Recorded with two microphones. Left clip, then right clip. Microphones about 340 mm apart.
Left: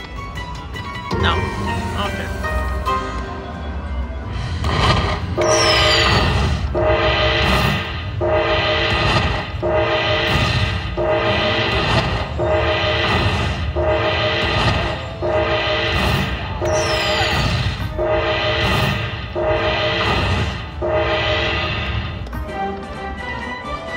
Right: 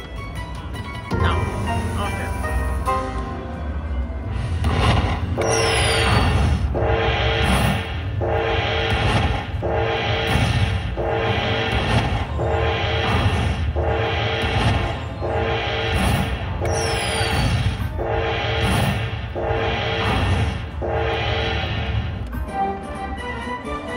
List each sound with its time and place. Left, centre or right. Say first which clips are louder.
5.4 s music: left 5 dB; centre
8.3 s gong: left 5 dB; centre
18.1 s music: left 4 dB; centre